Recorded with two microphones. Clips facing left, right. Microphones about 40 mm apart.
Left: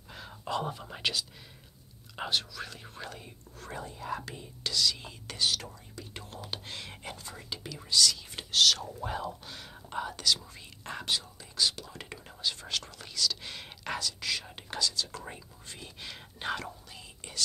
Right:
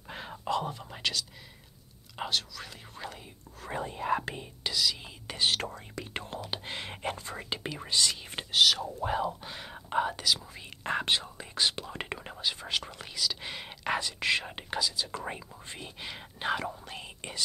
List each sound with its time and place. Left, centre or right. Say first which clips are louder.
0.1 s whispering: right 5 dB; right
0.5 s speech: right 2 dB; centre
3.7 s speech: right 7 dB; right
4.6 s speech: even; centre
5.6 s speech: right 7 dB; right
6.5 s speech: right 4 dB; right
8.5 s speech: right 1 dB; centre
10.2 s speech: even; centre
10.8 s speech: right 5 dB; right
12.4 s speech: right 1 dB; centre; by 14.6 s right
14.7 s speech: right 1 dB; centre
15.2 s speech: right 6 dB; right; by 16.7 s centre
16.8 s speech: right 6 dB; right